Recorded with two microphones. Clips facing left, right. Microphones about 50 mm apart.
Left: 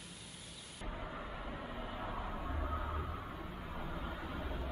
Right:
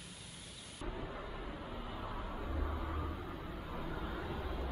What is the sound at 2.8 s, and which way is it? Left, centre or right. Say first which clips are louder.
Vehicle: even; centre.